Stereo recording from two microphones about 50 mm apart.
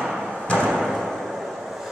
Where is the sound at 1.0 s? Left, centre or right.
Centre.